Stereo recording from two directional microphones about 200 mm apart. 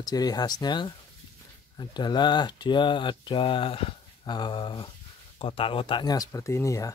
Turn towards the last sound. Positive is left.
turn(degrees=15)  # may be behind; listen again after turning